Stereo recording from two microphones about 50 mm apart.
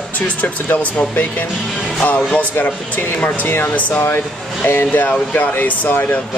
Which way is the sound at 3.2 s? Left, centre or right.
Left.